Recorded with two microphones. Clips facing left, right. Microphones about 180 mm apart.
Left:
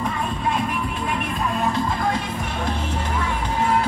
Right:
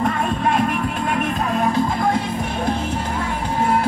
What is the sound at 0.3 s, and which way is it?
Music, 55° right (ahead or behind).